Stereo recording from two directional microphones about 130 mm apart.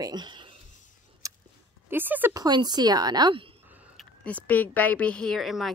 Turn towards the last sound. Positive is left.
turn(degrees=0)  # may be behind; listen again after turning